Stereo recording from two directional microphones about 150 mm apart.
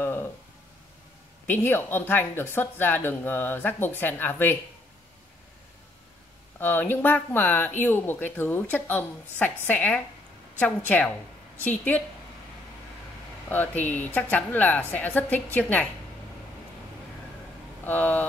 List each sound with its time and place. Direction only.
0.0 s a sound: 15° left (ahead or behind)
1.5 s speech: 15° left (ahead or behind)
6.6 s speech: 15° left (ahead or behind)
11.6 s speech: 10° left (ahead or behind)
13.5 s speech: 10° left (ahead or behind)
17.8 s speech: 10° left (ahead or behind)